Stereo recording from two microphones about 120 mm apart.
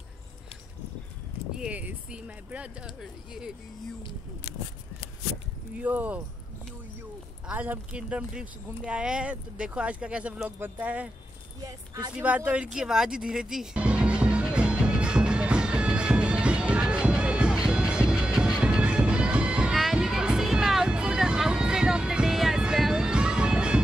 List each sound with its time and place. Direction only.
1.6 s speech: 10° right (ahead or behind)
5.8 s speech: 15° right (ahead or behind)
7.4 s speech: 15° right (ahead or behind)
11.6 s speech: 30° right (ahead or behind)
12.2 s music: 10° right (ahead or behind)